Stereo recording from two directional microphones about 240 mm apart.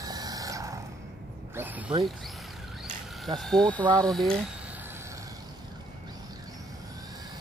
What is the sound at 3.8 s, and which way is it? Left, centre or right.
Speech, centre.